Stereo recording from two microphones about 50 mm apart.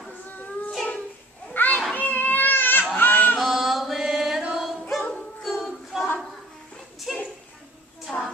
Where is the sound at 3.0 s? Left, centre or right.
Left.